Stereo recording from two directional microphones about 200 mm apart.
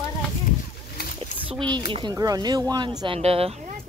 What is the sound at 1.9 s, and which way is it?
Speech, 20° right (ahead or behind).